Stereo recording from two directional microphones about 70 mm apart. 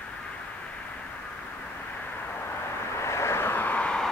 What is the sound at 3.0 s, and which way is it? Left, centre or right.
Vehicle, left.